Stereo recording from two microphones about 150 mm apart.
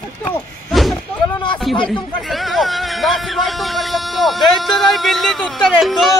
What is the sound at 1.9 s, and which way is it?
A man's voice, centre (ahead or behind).